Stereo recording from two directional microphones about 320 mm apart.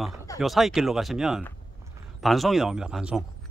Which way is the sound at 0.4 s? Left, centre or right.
Centre.